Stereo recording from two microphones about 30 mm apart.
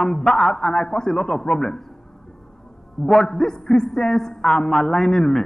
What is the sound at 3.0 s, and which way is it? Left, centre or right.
A man's voice, centre.